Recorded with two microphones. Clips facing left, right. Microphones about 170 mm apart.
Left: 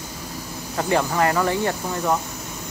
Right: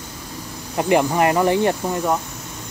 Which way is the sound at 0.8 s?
15° right (ahead or behind).